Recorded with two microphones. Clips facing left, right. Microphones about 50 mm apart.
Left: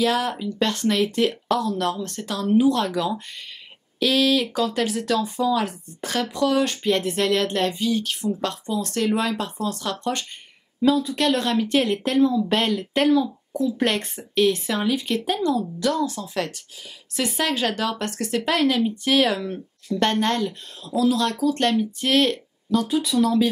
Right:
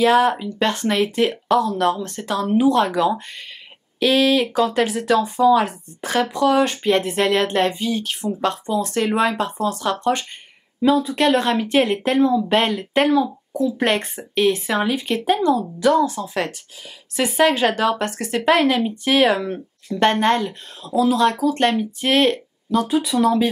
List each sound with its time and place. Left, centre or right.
0.0 s speech: centre